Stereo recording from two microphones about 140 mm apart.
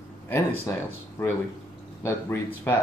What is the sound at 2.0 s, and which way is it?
Speech, 15° left (ahead or behind).